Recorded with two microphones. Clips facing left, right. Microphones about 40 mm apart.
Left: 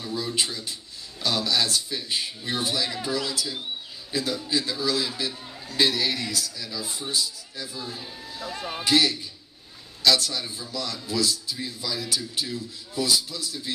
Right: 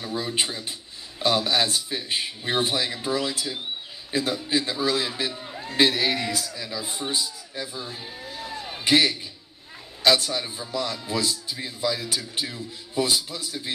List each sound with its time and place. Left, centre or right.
0.0 s a man's voice: right
5.3 s a sound: centre
5.7 s a man's voice: right